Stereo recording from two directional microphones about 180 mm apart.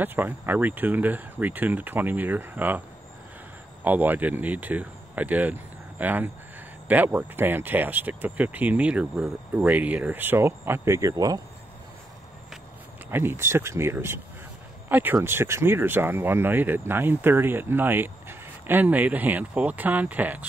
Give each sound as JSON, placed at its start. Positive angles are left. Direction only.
{"t": 0.0, "sound": "speech", "side_deg": -10}
{"t": 3.8, "sound": "speech", "side_deg": -10}
{"t": 13.1, "sound": "speech", "side_deg": -10}